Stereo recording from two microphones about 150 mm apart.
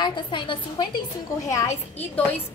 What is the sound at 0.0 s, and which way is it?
Speech, 30° left (ahead or behind).